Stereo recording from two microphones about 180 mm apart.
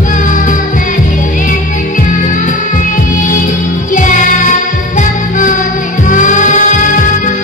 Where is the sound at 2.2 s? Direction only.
45° left (ahead or behind).